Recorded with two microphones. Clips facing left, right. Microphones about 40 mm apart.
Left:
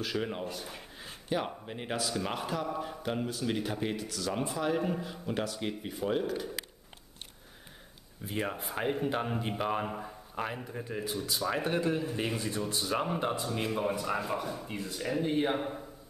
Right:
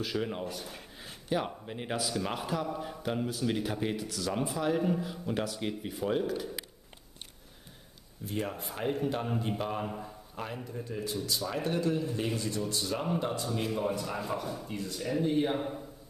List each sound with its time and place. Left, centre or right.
0.0 s speech: centre
8.3 s a man's voice: centre